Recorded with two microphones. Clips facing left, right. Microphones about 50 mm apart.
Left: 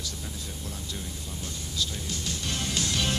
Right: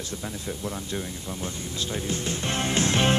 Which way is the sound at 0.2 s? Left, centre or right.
Right.